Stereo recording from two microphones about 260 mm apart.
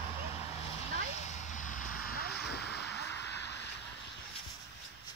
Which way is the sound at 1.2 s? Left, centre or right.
Left.